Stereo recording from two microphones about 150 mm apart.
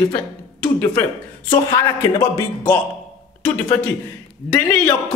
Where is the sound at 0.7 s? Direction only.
15° left (ahead or behind).